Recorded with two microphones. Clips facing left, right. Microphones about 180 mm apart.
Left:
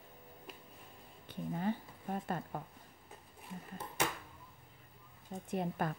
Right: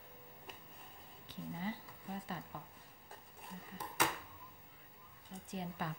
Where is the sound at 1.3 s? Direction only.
55° left (ahead or behind).